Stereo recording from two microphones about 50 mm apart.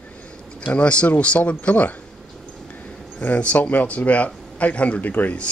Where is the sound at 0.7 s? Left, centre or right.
Left.